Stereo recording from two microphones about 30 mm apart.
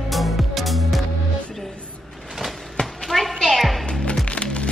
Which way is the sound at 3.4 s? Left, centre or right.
Centre.